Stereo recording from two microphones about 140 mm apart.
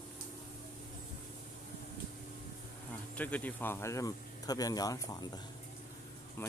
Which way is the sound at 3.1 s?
10° left (ahead or behind).